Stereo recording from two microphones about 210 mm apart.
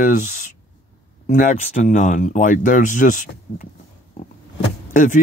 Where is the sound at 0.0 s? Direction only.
40° left (ahead or behind).